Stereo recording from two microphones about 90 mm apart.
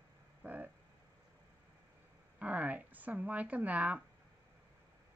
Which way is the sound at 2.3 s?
15° right (ahead or behind).